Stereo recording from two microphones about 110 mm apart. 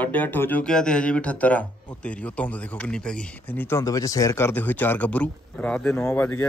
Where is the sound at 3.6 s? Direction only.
30° left (ahead or behind).